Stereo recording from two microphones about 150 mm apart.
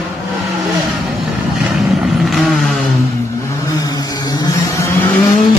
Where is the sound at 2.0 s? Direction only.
Centre (ahead or behind).